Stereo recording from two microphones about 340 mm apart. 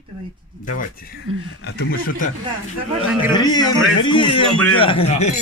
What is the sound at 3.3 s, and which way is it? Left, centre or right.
Speech, centre.